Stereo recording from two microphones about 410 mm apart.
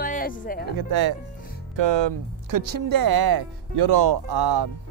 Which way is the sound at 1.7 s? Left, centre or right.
Right.